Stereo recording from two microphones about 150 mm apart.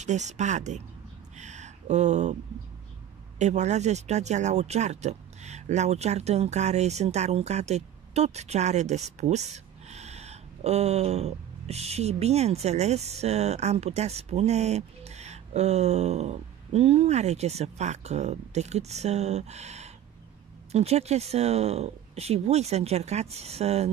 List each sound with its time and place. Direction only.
0.0 s speech: 50° right (ahead or behind)
1.4 s a sound: 50° right (ahead or behind)
3.3 s speech: 50° right (ahead or behind)